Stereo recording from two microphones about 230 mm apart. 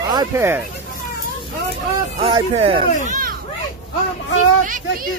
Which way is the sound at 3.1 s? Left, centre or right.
Right.